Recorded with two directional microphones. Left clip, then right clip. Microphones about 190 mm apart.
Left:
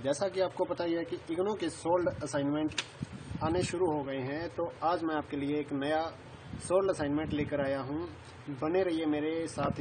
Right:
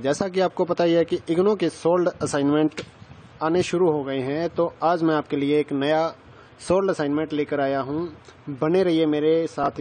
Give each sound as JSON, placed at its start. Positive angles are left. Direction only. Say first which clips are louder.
{"t": 0.0, "sound": "speech", "louder": "right 8 dB", "side_deg": -40}
{"t": 3.3, "sound": "speech", "louder": "right 10 dB", "side_deg": -45}